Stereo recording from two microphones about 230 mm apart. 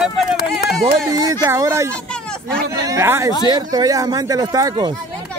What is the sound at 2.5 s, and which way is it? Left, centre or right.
Speech, right.